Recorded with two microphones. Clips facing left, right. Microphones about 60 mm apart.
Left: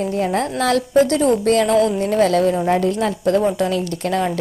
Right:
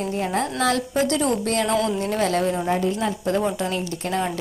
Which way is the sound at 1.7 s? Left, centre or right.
Left.